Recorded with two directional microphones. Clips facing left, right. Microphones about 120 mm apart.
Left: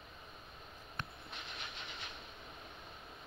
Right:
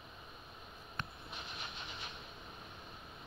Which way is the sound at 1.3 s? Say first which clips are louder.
Right 1 dB; 25° right (ahead or behind).